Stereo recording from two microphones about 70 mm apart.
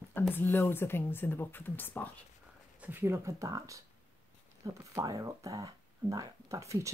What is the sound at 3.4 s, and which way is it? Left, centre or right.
Speech, right.